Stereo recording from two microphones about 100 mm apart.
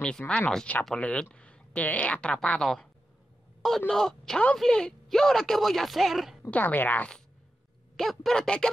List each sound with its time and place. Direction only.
0.3 s speech: 5° left (ahead or behind)
3.9 s speech: 5° left (ahead or behind)
6.5 s speech: 20° left (ahead or behind)
7.9 s speech: centre (ahead or behind)